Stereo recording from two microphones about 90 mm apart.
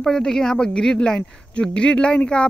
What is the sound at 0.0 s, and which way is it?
Speech, 5° left (ahead or behind).